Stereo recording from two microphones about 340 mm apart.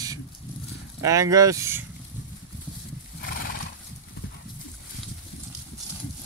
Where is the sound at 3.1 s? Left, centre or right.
Left.